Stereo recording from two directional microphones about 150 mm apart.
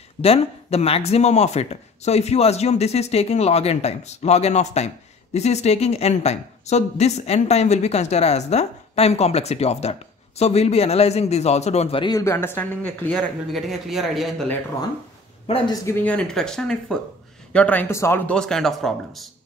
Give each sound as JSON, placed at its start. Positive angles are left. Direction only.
{"t": 0.2, "sound": "speech", "side_deg": 40}
{"t": 12.0, "sound": "speech", "side_deg": 25}
{"t": 13.5, "sound": "speech", "side_deg": 0}
{"t": 15.4, "sound": "speech", "side_deg": 40}
{"t": 15.7, "sound": "speech", "side_deg": 20}